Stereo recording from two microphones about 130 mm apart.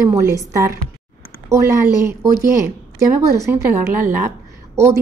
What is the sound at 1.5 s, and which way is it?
Speech, 20° right (ahead or behind).